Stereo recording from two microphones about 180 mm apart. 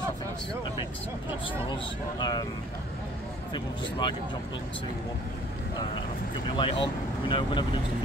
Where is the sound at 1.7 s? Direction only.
25° left (ahead or behind).